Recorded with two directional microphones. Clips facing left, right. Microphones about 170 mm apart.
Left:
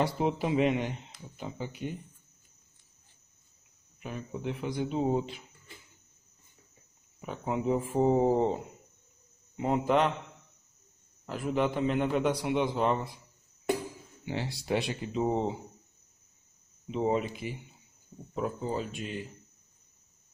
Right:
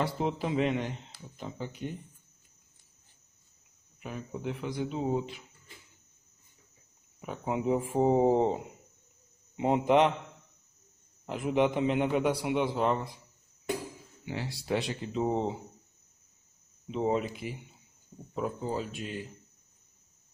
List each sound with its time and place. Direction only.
0.0 s a man's voice: 15° left (ahead or behind)
4.0 s speech: centre (ahead or behind)
4.6 s speech: 20° left (ahead or behind)
7.2 s a man's voice: 5° right (ahead or behind)
11.2 s speech: 20° right (ahead or behind); by 13.1 s centre (ahead or behind)
14.2 s speech: 25° left (ahead or behind)
14.8 s speech: 10° left (ahead or behind)
16.9 s speech: centre (ahead or behind)